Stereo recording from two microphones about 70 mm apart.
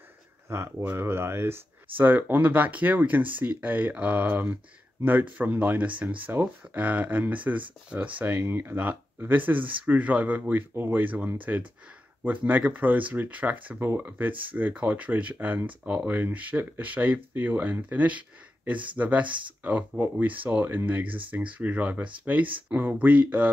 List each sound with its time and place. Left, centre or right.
0.5 s speech: right; by 13.7 s centre
13.7 s speech: right